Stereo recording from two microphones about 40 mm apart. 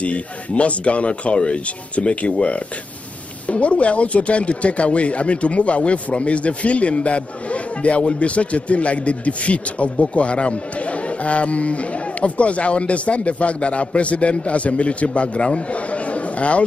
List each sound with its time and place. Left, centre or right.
0.0 s speech: left